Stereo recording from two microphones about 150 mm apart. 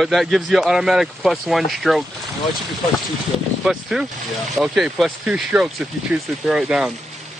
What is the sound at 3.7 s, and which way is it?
Speech, centre (ahead or behind).